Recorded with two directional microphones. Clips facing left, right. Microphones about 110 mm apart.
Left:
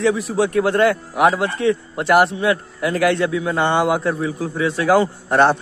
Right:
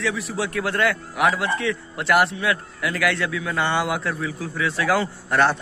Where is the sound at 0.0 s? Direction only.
35° left (ahead or behind).